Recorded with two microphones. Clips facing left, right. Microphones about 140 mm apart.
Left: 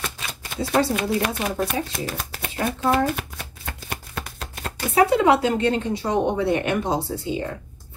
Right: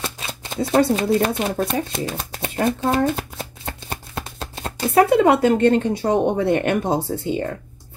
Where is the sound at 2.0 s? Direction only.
25° right (ahead or behind).